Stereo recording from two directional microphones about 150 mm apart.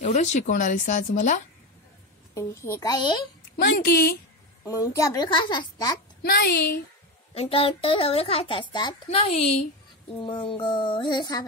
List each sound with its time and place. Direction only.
0.0 s speech: 50° left (ahead or behind)
2.3 s a woman's voice: 20° left (ahead or behind)
3.6 s a woman's voice: 90° left
4.6 s a woman's voice: 20° left (ahead or behind)
6.2 s a woman's voice: 90° left
7.3 s a child's voice: 40° left (ahead or behind)
9.1 s a child's voice: 40° left (ahead or behind)